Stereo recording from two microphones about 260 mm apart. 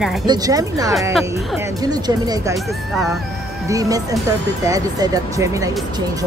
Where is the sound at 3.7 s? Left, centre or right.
Centre.